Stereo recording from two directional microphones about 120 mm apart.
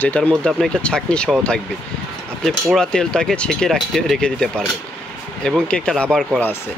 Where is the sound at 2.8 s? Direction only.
5° left (ahead or behind).